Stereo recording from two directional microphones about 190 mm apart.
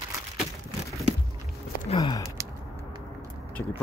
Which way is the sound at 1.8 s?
30° left (ahead or behind).